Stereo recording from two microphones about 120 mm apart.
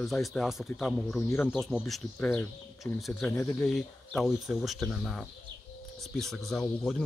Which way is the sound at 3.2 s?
20° left (ahead or behind).